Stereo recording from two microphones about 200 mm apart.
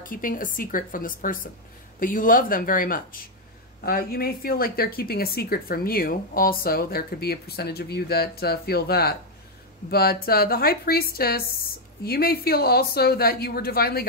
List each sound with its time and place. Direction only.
0.0 s a woman's voice: 45° left (ahead or behind)